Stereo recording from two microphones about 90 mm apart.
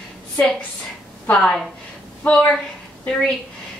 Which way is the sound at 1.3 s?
10° left (ahead or behind).